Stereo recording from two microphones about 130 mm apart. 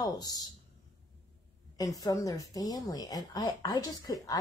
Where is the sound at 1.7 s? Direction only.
25° left (ahead or behind).